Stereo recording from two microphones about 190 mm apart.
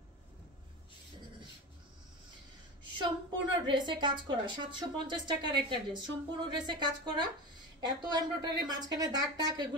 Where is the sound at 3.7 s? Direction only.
25° right (ahead or behind).